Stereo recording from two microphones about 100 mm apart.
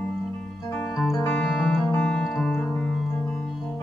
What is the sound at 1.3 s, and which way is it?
Music, 5° left (ahead or behind).